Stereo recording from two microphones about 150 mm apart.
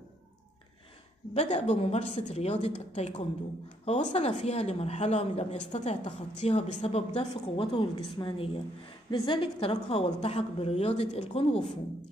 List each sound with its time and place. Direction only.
1.3 s a woman's voice: 50° left (ahead or behind)